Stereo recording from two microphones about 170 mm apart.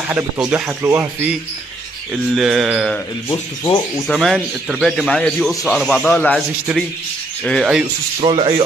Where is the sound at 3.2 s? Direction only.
25° left (ahead or behind).